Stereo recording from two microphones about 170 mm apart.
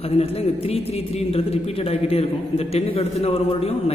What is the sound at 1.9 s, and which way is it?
A man's voice, 35° left (ahead or behind).